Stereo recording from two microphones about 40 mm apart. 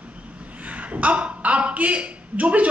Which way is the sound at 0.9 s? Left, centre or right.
Right.